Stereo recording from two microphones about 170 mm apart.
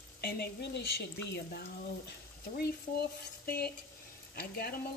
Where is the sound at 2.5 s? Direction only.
70° left (ahead or behind).